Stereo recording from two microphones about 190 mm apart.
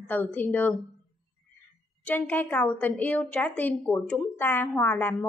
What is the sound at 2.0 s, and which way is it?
A woman's voice, 10° left (ahead or behind).